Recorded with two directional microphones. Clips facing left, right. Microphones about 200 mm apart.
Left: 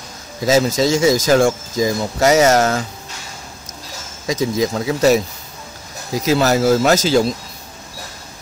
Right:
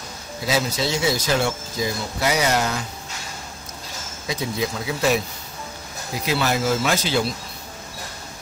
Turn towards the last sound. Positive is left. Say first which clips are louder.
# left 8 dB
turn(degrees=40)  # may be behind; listen again after turning